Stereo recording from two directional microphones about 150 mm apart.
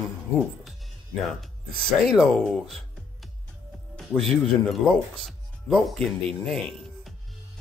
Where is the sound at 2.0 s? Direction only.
Centre (ahead or behind).